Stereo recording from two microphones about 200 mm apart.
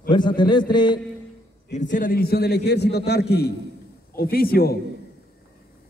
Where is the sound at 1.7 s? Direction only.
40° left (ahead or behind).